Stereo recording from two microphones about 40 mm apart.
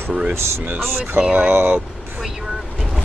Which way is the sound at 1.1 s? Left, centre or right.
Right.